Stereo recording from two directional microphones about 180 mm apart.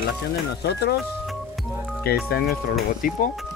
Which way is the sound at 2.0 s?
60° left (ahead or behind).